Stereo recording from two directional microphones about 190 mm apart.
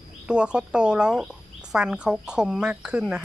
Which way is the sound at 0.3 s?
5° right (ahead or behind).